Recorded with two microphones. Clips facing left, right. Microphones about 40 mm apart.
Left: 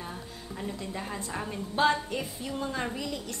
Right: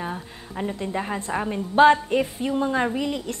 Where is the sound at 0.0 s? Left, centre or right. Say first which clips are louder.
Right 8 dB; right.